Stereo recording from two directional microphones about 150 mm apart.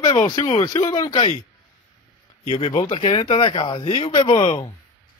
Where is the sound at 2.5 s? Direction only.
30° left (ahead or behind).